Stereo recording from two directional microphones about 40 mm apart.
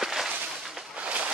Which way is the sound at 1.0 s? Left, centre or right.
Right.